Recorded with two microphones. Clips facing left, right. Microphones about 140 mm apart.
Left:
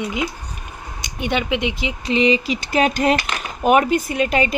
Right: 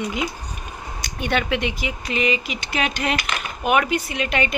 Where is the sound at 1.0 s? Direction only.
20° left (ahead or behind).